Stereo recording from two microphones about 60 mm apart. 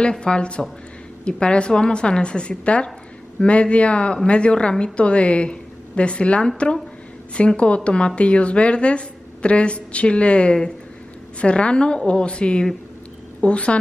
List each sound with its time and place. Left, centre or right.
0.0 s a woman's voice: centre